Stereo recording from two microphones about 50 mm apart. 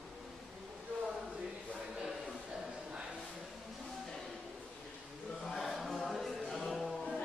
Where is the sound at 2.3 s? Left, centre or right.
Centre.